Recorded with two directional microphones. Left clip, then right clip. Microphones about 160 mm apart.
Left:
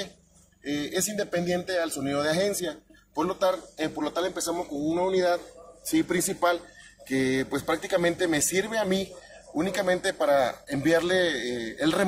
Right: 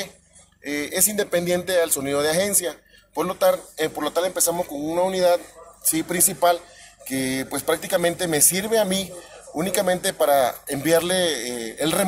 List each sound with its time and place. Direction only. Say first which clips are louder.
0.7 s speech: right 4 dB; 35° right (ahead or behind)